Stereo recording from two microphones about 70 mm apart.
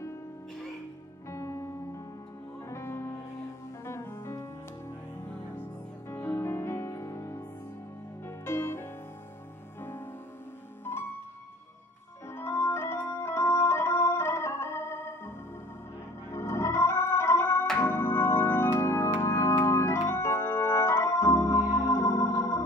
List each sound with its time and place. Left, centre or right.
1.3 s music: left
2.7 s music: left
12.3 s organ: left